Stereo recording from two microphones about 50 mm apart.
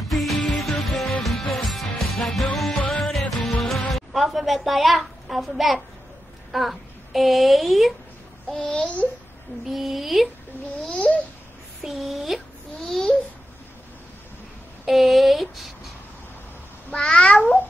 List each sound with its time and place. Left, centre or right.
0.1 s music: centre
6.5 s a woman's voice: centre
8.5 s babbling: centre
9.7 s speech: centre
10.9 s babbling: left
11.8 s speech: centre
12.9 s babbling: centre
14.9 s speech: centre
16.9 s speech: centre
17.2 s babbling: left